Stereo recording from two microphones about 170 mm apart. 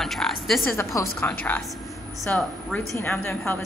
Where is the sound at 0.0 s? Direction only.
Centre (ahead or behind).